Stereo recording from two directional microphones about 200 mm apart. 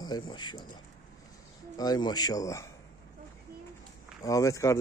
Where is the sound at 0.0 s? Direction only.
20° left (ahead or behind).